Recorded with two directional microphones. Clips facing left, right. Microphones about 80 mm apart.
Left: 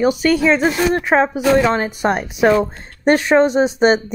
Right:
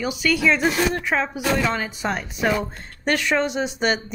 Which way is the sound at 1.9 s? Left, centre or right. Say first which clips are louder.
Left 8 dB; left.